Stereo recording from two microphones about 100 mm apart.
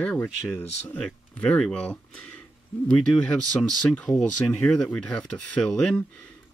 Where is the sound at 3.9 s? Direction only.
5° left (ahead or behind).